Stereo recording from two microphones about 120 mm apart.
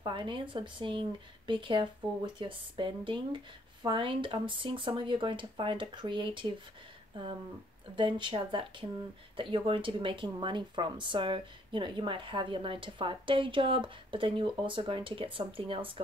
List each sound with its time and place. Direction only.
0.0 s speech: 40° right (ahead or behind)